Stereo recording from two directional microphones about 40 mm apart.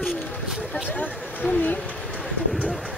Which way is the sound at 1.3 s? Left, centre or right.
Left.